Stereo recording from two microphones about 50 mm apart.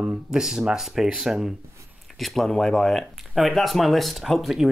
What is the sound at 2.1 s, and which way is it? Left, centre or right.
Speech, centre.